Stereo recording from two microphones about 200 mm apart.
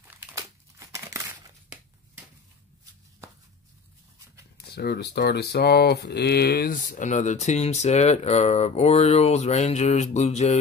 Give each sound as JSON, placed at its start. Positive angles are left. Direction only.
{"t": 0.1, "sound": "crumpling", "side_deg": -15}
{"t": 4.6, "sound": "speech", "side_deg": 55}